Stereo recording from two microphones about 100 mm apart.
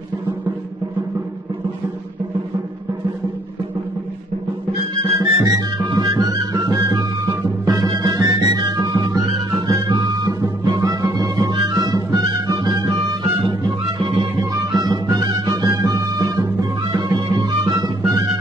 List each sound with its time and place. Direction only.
5.0 s music: 35° right (ahead or behind)
8.5 s music: 40° right (ahead or behind)
14.4 s music: 35° right (ahead or behind)